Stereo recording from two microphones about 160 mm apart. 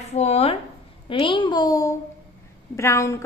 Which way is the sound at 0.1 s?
40° left (ahead or behind).